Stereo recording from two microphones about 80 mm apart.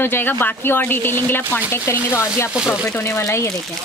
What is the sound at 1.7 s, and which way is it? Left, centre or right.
Speech, left.